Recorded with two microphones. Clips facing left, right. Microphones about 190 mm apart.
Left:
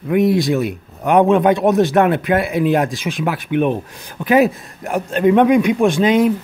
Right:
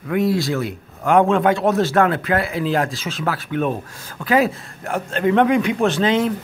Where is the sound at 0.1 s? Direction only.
20° left (ahead or behind).